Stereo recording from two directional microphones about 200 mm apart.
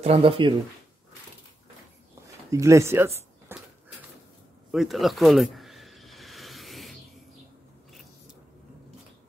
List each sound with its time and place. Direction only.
0.0 s speech: 30° right (ahead or behind)
2.5 s speech: 15° right (ahead or behind)
4.6 s a sound: centre (ahead or behind)